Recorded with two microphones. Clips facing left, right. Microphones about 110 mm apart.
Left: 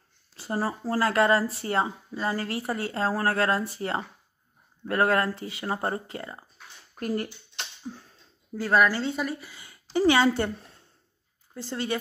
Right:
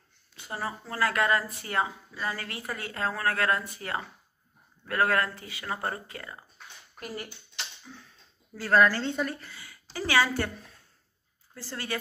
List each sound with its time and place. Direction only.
0.4 s speech: 35° left (ahead or behind)
7.0 s speech: 45° left (ahead or behind)
7.8 s a sound: 40° left (ahead or behind)
8.5 s speech: 15° left (ahead or behind)
9.5 s a woman's voice: 20° left (ahead or behind)
11.5 s speech: 20° left (ahead or behind)